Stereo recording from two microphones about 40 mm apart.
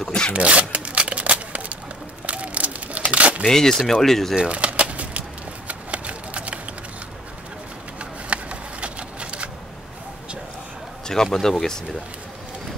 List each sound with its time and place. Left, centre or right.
0.0 s speech: centre
0.3 s speech: right
0.7 s a sound: right
2.2 s crumpling: right
3.4 s speech: centre
4.4 s a sound: right
5.7 s shuffling cards: right
8.0 s a sound: right
11.1 s speech: centre